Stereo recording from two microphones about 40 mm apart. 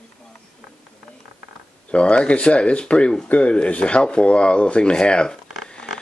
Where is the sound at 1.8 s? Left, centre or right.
Left.